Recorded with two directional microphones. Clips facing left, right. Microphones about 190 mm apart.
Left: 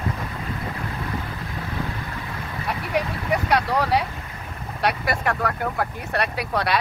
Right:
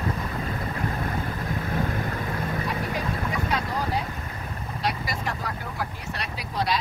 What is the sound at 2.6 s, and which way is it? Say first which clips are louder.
Vehicle: left 3 dB; 70° left (ahead or behind).